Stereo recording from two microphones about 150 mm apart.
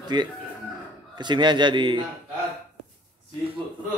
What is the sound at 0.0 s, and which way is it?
A man's voice, 30° right (ahead or behind).